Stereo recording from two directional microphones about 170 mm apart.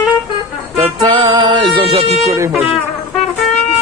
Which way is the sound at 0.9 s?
25° right (ahead or behind).